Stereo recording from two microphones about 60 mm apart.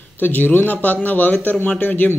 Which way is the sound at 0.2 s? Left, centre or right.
Left.